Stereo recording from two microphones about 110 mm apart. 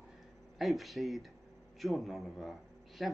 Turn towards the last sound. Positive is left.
turn(degrees=0)  # may be behind; listen again after turning